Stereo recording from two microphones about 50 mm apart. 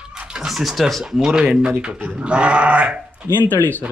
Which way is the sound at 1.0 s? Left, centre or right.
Centre.